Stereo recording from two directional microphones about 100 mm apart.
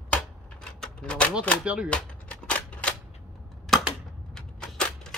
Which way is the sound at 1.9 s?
10° left (ahead or behind).